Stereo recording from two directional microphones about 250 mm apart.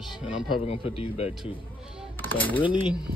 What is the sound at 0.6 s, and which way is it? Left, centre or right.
Speech, left.